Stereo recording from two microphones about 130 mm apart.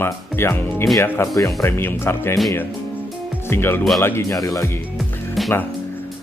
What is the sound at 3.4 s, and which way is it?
Speech, 15° left (ahead or behind).